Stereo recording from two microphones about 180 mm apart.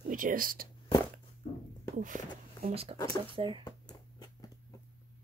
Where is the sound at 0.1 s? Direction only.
50° right (ahead or behind).